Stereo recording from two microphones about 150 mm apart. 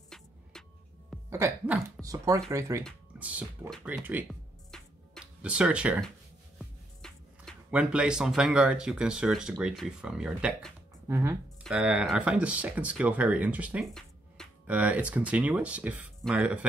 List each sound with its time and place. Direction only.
0.1 s music: 5° left (ahead or behind)
1.3 s speech: 15° right (ahead or behind)
3.2 s speech: 10° right (ahead or behind)
4.6 s music: 5° left (ahead or behind)
5.4 s speech: 5° right (ahead or behind)
6.6 s music: 5° left (ahead or behind)
7.7 s speech: 10° right (ahead or behind)
11.1 s speech: 15° right (ahead or behind)
11.6 s speech: 5° right (ahead or behind)
13.9 s music: 5° left (ahead or behind)
14.7 s speech: 10° right (ahead or behind)